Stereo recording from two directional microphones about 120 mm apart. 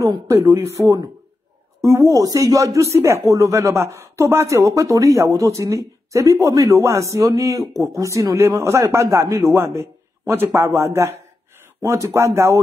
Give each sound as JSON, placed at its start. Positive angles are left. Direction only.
{"t": 0.0, "sound": "speech", "side_deg": -30}